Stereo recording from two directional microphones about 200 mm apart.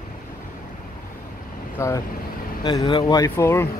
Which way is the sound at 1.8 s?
15° left (ahead or behind).